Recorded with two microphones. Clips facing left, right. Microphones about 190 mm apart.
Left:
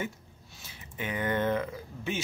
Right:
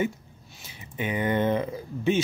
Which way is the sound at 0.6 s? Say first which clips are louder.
Right 6 dB; 15° right (ahead or behind).